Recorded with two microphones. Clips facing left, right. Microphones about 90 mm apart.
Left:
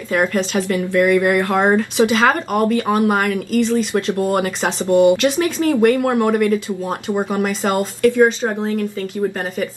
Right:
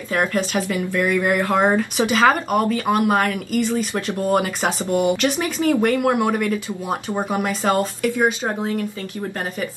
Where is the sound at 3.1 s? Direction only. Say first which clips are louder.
Left 2 dB; centre (ahead or behind).